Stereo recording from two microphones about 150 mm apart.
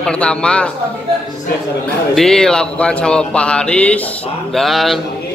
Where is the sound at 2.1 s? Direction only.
5° left (ahead or behind).